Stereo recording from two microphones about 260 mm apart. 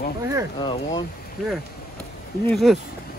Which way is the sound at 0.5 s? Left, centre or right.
Centre.